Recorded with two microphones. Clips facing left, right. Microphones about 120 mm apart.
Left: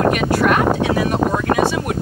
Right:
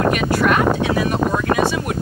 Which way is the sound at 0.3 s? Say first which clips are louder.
Left 1 dB; 40° left (ahead or behind).